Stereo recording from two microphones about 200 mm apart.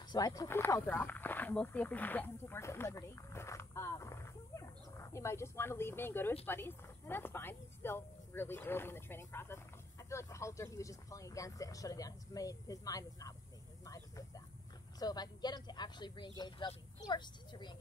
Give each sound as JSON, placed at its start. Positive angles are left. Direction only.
{"t": 0.1, "sound": "speech", "side_deg": 20}